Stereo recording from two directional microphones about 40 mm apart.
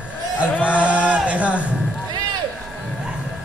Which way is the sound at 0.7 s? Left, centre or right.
Right.